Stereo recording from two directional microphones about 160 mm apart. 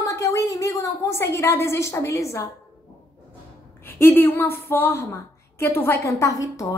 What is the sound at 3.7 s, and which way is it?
A woman's voice, 15° left (ahead or behind).